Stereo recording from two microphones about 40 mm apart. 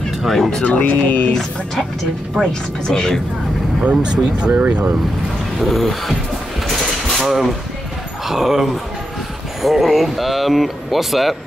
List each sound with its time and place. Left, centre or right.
0.2 s speech: centre
0.7 s speech: left
2.4 s speech: centre
3.9 s speech: right
4.5 s speech: right
5.6 s speech: centre
7.2 s speech: centre